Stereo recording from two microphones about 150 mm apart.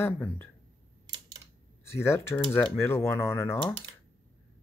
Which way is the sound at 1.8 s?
15° left (ahead or behind).